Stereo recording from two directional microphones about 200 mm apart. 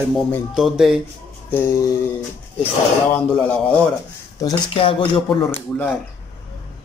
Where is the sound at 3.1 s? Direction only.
5° left (ahead or behind).